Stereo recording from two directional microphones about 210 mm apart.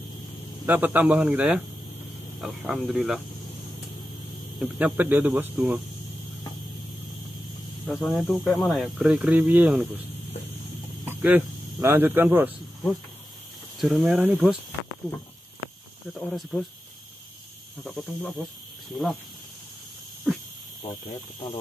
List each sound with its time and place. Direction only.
0.7 s speech: 10° right (ahead or behind)
4.6 s speech: 5° right (ahead or behind)
7.8 s speech: centre (ahead or behind)
11.1 s speech: 10° right (ahead or behind)
13.7 s speech: centre (ahead or behind)
16.1 s speech: centre (ahead or behind)
17.8 s speech: 5° left (ahead or behind)